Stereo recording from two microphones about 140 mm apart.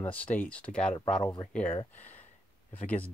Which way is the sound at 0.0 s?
10° left (ahead or behind).